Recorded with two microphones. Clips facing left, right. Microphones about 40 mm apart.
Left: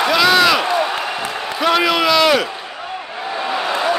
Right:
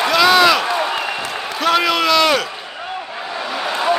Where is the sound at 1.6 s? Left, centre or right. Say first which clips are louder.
Left 1 dB; centre.